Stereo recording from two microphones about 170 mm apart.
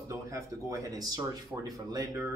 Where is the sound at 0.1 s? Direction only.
20° right (ahead or behind).